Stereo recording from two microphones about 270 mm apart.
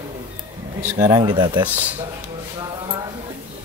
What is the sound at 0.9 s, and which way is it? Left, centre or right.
Speech, centre.